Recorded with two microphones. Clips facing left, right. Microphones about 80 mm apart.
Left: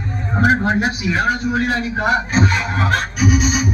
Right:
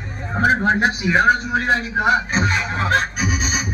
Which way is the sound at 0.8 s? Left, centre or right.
Right.